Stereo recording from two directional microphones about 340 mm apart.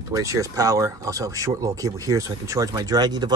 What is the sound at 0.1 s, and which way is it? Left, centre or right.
Speech, centre.